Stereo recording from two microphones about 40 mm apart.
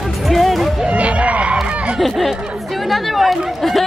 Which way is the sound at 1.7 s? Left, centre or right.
Right.